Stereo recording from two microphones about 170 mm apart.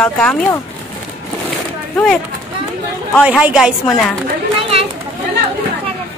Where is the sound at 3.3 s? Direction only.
5° right (ahead or behind).